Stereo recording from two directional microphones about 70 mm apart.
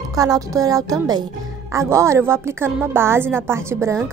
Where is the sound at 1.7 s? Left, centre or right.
Right.